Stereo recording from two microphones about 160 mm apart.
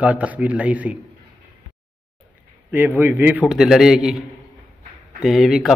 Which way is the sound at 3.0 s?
10° right (ahead or behind).